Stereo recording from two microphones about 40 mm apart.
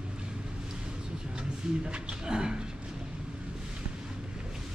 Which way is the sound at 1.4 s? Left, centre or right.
Right.